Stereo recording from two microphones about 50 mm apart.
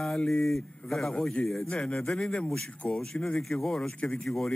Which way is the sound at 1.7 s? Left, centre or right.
Centre.